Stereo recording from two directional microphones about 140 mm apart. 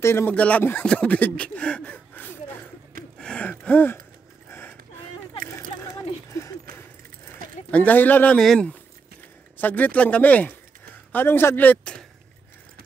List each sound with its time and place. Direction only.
0.0 s speech: 15° left (ahead or behind)
3.2 s a sound: 10° left (ahead or behind)
7.7 s a man's voice: 10° left (ahead or behind)